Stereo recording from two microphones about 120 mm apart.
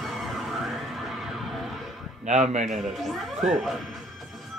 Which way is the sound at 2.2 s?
75° right (ahead or behind).